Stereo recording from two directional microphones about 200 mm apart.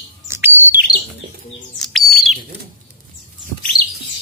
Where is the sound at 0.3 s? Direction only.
10° right (ahead or behind).